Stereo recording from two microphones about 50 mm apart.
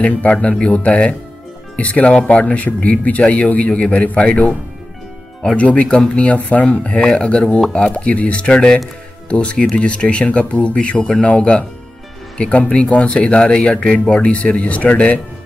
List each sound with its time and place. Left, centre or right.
0.0 s speech: left
5.6 s speech: left